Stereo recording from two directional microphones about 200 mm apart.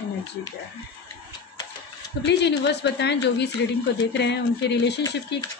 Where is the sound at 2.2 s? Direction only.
55° left (ahead or behind).